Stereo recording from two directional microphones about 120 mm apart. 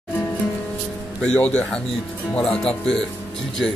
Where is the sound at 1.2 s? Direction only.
10° left (ahead or behind).